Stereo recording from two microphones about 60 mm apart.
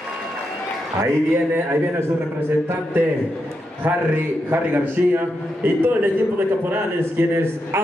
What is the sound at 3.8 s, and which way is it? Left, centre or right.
A man's voice, right.